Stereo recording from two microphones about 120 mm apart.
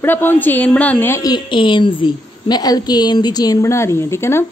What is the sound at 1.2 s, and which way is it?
A woman's voice, 40° left (ahead or behind).